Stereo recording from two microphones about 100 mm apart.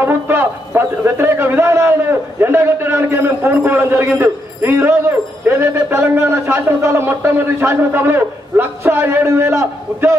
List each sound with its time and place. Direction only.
0.0 s a man's voice: 25° right (ahead or behind)